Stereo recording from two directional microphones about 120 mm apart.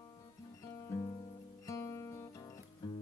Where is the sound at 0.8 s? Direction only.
30° left (ahead or behind).